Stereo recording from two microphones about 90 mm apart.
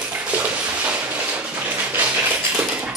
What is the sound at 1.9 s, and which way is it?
Tap, 15° right (ahead or behind).